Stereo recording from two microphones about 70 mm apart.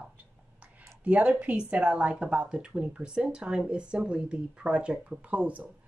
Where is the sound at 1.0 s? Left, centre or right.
Centre.